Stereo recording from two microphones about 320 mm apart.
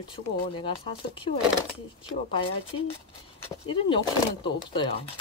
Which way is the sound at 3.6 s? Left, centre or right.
Centre.